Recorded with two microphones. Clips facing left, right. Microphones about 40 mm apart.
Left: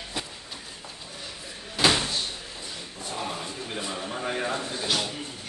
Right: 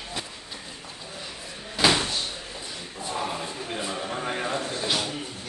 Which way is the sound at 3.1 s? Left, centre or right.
Centre.